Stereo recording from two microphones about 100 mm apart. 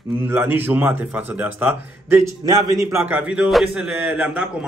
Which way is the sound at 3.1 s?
10° right (ahead or behind).